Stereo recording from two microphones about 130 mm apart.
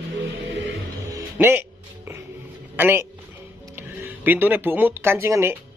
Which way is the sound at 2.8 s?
15° right (ahead or behind).